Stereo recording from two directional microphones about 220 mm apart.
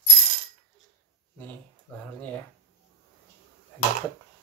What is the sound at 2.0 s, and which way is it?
Speech, 5° left (ahead or behind).